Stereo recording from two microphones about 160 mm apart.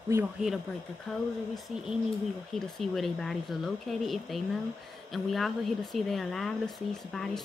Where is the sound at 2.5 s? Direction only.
Centre (ahead or behind).